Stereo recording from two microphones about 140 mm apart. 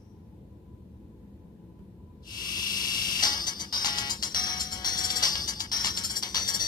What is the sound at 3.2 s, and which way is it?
Music, 30° left (ahead or behind).